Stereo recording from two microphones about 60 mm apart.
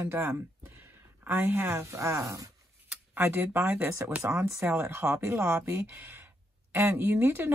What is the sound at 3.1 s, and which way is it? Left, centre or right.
Speech, right.